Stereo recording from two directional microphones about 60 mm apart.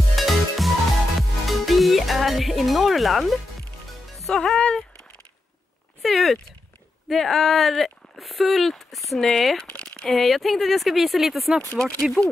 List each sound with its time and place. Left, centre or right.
0.1 s music: centre
4.3 s speech: centre
6.0 s speech: centre
9.7 s crumpling: centre
10.0 s speech: centre
11.7 s speech: centre